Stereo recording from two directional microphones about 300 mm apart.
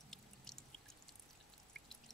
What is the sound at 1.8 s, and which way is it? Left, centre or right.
Pour, centre.